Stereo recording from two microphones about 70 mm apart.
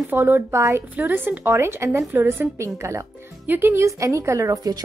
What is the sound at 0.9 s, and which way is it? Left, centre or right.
Speech, right.